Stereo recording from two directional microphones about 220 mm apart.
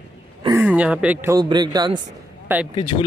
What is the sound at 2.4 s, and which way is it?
Speech, 5° right (ahead or behind).